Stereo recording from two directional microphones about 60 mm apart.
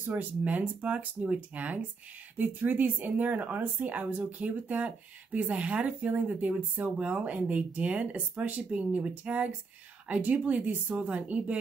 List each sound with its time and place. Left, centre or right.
0.0 s speech: right